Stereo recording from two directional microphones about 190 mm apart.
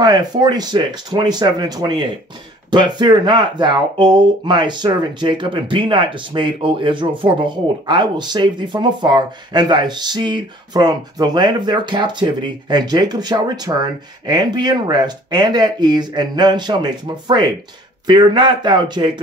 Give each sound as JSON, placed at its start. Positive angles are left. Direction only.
{"t": 0.0, "sound": "speech", "side_deg": -20}